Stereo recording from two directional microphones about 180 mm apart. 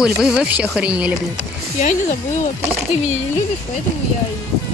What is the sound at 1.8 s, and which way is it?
Speech, 45° left (ahead or behind).